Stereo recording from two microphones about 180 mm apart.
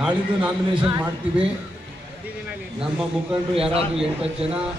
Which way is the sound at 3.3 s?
30° right (ahead or behind).